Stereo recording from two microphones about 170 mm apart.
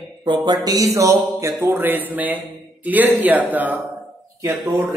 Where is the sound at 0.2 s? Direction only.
25° right (ahead or behind); by 3.8 s 10° right (ahead or behind).